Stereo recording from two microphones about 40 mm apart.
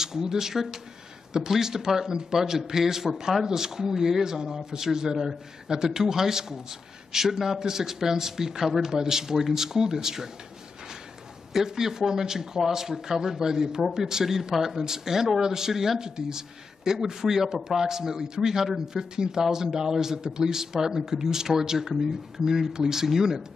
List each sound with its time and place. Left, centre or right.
0.0 s speech: centre
11.6 s speech: centre